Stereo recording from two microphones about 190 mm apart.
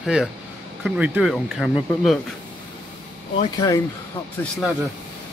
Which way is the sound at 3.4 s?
20° left (ahead or behind).